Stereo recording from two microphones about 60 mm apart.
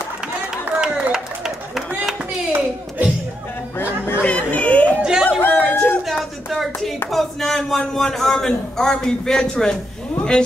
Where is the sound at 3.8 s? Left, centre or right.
Left.